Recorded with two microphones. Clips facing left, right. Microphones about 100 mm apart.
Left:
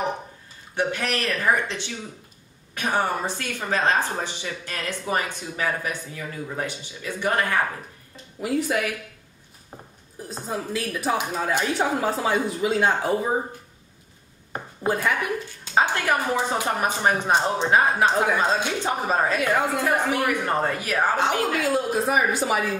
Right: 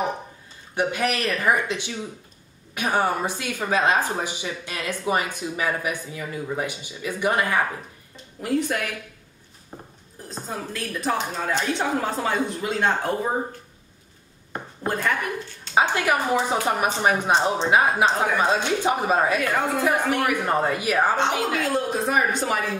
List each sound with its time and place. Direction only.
0.7 s speech: 15° right (ahead or behind)
8.4 s a woman's voice: centre (ahead or behind)
10.2 s a woman's voice: 5° left (ahead or behind)
14.5 s a sound: 5° left (ahead or behind)
15.7 s speech: 15° right (ahead or behind)
19.5 s a woman's voice: 5° left (ahead or behind); by 21.1 s 15° right (ahead or behind)
21.2 s a woman's voice: centre (ahead or behind)